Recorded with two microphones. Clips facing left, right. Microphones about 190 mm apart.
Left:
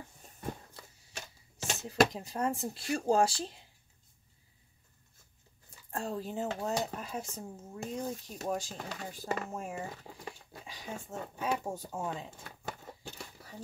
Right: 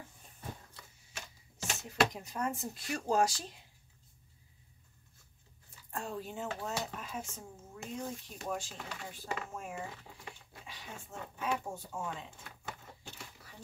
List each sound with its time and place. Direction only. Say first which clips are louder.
1.7 s speech: left 4 dB; 35° left (ahead or behind)
5.9 s speech: left 4 dB; 35° left (ahead or behind)